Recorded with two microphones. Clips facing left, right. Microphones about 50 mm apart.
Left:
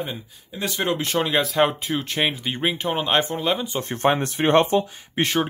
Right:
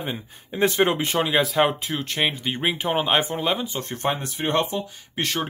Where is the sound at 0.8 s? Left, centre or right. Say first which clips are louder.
Left 1 dB; centre.